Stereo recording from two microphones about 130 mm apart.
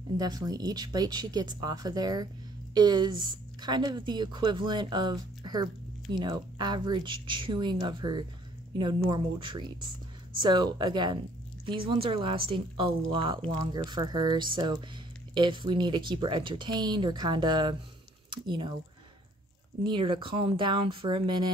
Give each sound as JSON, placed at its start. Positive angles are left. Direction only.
{"t": 0.2, "sound": "a woman's voice", "side_deg": -30}
{"t": 13.5, "sound": "a woman's voice", "side_deg": -30}
{"t": 19.8, "sound": "a woman's voice", "side_deg": -35}